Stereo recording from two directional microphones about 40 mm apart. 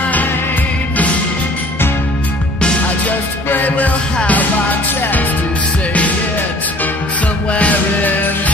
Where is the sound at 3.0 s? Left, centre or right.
Left.